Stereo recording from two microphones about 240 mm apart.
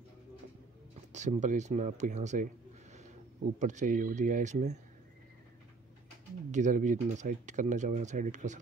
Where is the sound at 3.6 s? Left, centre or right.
Right.